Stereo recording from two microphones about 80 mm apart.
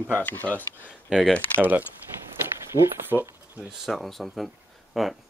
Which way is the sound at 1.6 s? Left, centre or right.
Right.